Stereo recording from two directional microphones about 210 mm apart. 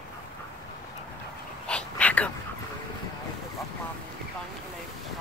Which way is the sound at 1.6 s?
5° left (ahead or behind).